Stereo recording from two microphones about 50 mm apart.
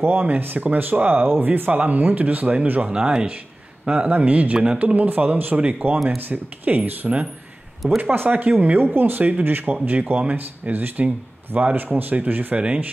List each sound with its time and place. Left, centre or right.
0.2 s speech: right
2.9 s speech: centre
4.2 s speech: right
12.5 s speech: right